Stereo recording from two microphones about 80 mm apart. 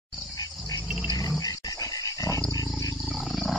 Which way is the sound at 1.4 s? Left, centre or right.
Left.